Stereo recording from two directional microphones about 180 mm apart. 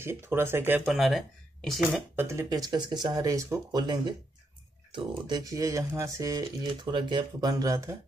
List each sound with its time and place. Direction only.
0.0 s speech: 15° right (ahead or behind)
0.8 s speech: centre (ahead or behind)
2.1 s speech: 15° right (ahead or behind)